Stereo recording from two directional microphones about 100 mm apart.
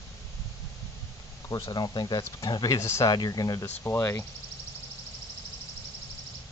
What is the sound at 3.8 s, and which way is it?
Speech, 30° left (ahead or behind).